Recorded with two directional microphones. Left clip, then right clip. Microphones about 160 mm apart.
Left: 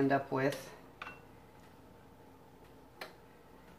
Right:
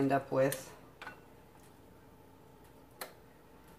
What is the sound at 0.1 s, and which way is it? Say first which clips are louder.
Speech: right 2 dB; 15° left (ahead or behind).